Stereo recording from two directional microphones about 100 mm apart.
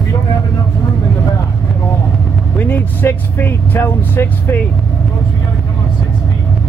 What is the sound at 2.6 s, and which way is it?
Speech, 15° left (ahead or behind).